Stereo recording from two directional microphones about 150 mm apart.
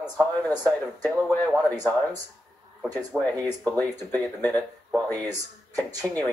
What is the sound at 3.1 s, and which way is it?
Speech, 10° right (ahead or behind).